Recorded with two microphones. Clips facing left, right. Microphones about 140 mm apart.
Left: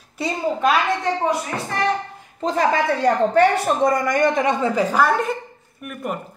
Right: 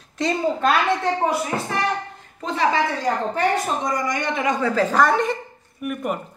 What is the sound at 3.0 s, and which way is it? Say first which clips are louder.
Speech: left 6 dB; 60° left (ahead or behind).